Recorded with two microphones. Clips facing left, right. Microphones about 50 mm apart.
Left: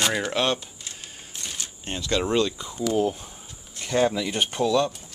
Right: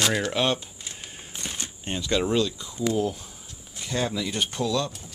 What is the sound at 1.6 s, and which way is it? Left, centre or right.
Speech, centre.